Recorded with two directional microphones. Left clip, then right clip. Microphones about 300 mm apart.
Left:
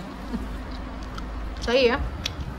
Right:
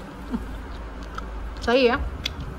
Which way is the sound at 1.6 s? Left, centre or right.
Centre.